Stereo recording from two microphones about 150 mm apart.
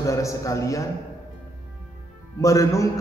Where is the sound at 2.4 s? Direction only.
20° left (ahead or behind).